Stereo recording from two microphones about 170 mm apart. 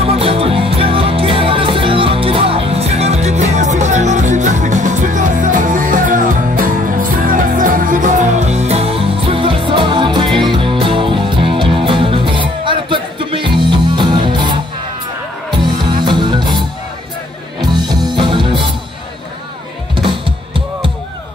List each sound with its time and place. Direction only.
0.0 s music: 35° right (ahead or behind)
20.0 s music: 30° right (ahead or behind)